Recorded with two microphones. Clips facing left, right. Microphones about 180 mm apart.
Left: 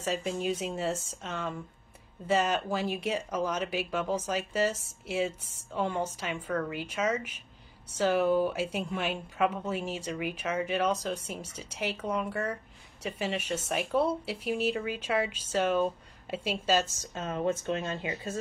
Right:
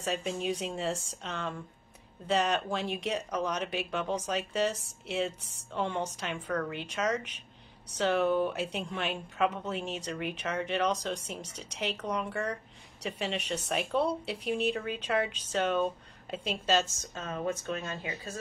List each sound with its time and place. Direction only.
0.0 s speech: centre (ahead or behind)
17.5 s speech: 25° left (ahead or behind)